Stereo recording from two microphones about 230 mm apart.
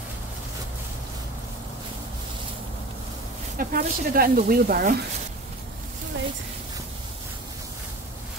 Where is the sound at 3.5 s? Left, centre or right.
Right.